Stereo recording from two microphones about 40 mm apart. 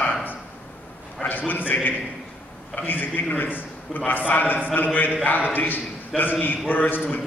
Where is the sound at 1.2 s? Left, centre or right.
Left.